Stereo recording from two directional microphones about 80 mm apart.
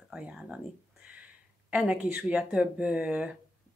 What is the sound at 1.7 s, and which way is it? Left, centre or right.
Speech, centre.